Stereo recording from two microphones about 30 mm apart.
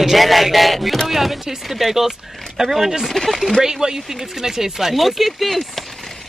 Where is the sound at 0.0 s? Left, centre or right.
Centre.